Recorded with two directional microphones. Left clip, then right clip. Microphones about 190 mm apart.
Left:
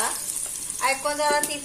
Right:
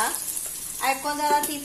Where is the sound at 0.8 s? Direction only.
25° right (ahead or behind).